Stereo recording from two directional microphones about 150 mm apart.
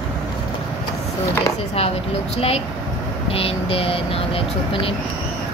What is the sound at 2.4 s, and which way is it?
A woman's voice, 40° left (ahead or behind).